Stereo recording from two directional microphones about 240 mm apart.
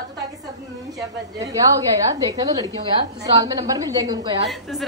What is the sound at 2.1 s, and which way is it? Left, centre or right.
A woman's voice, centre.